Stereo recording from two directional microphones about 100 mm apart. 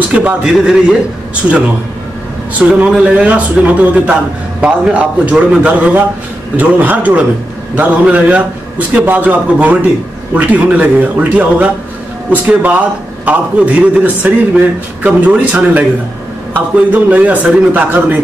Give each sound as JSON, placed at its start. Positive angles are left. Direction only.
{"t": 0.1, "sound": "a man's voice", "side_deg": -10}
{"t": 2.7, "sound": "a man's voice", "side_deg": -10}